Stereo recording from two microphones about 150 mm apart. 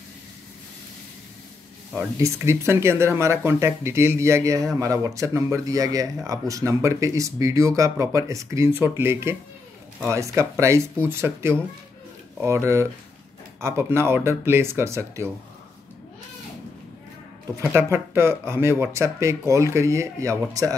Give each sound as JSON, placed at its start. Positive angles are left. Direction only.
{"t": 2.0, "sound": "speech", "side_deg": -20}
{"t": 17.9, "sound": "speech", "side_deg": -15}